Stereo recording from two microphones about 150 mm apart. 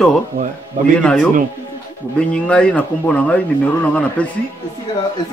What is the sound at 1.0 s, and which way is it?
Speech, centre (ahead or behind).